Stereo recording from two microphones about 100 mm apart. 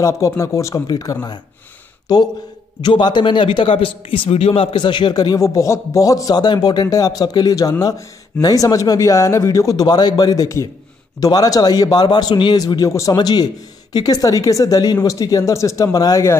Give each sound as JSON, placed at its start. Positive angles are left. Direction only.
{"t": 0.0, "sound": "a man's voice", "side_deg": 35}
{"t": 4.3, "sound": "speech", "side_deg": 85}
{"t": 4.7, "sound": "a man's voice", "side_deg": 50}